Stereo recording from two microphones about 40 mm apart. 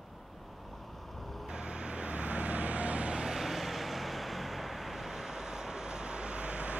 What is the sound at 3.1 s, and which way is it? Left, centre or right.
Vehicle, centre.